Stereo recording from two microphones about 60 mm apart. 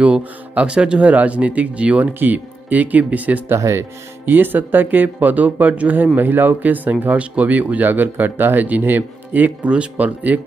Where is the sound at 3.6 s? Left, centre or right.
Right.